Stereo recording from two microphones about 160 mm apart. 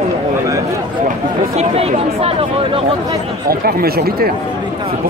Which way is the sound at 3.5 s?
70° right (ahead or behind).